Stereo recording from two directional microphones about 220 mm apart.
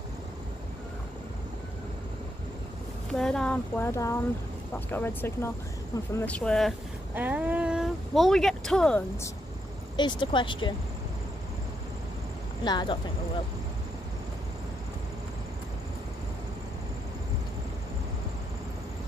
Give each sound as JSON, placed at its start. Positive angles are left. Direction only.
{"t": 3.1, "sound": "a sound", "side_deg": 5}
{"t": 6.1, "sound": "speech", "side_deg": 5}
{"t": 7.2, "sound": "speech", "side_deg": -10}
{"t": 9.9, "sound": "speech", "side_deg": 20}
{"t": 12.6, "sound": "speech", "side_deg": 20}